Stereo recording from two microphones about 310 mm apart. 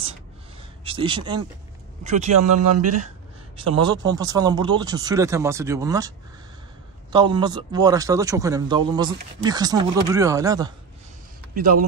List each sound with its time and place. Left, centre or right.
0.8 s speech: centre
2.6 s speech: right
3.5 s speech: centre
11.5 s speech: right